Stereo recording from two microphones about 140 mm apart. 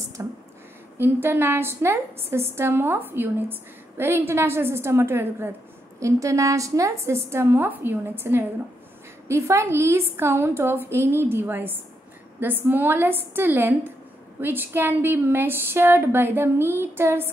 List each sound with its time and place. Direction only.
0.2 s a woman's voice: 20° right (ahead or behind)